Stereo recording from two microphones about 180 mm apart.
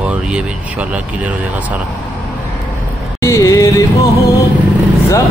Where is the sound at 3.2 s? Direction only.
15° left (ahead or behind).